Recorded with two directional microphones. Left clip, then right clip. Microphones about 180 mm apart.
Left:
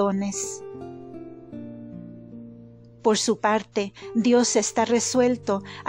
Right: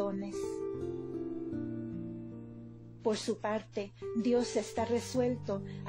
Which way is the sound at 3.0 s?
45° left (ahead or behind).